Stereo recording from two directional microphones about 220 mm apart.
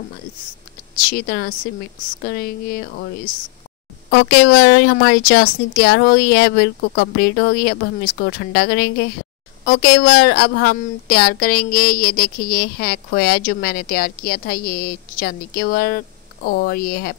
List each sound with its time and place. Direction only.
1.1 s a woman's voice: 45° left (ahead or behind)
4.1 s a woman's voice: 45° left (ahead or behind)